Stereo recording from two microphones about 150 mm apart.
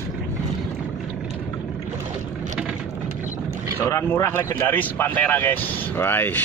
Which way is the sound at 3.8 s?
20° left (ahead or behind).